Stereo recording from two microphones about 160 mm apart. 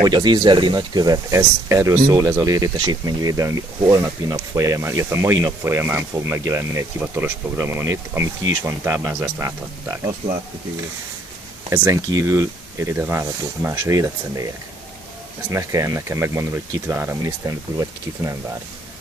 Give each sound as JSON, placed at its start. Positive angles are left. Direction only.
{"t": 0.0, "sound": "speech", "side_deg": -30}
{"t": 11.7, "sound": "speech", "side_deg": -20}
{"t": 15.5, "sound": "speech", "side_deg": -20}